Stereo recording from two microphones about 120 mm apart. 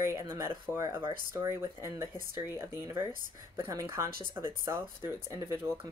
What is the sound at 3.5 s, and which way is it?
A woman's voice, 25° right (ahead or behind).